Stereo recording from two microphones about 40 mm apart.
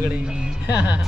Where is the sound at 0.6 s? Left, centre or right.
Right.